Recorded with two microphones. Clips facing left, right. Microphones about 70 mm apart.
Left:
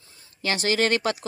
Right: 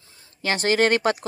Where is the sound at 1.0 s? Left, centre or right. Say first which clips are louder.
Right 4 dB; right.